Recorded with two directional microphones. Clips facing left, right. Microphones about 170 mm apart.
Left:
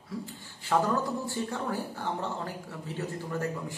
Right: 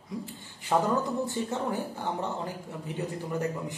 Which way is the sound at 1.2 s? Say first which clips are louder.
Right 2 dB; 20° right (ahead or behind).